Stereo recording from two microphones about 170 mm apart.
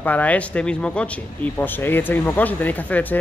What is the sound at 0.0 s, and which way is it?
Speech, 10° left (ahead or behind).